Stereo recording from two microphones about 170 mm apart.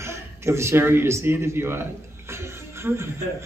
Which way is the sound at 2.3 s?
15° right (ahead or behind).